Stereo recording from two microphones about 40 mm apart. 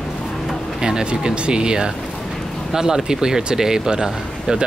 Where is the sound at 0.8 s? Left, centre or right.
Centre.